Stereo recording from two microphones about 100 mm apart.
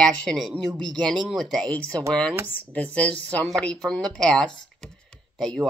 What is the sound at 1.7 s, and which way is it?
Speech, 15° left (ahead or behind).